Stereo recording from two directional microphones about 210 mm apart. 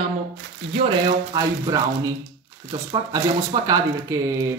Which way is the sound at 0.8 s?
25° right (ahead or behind).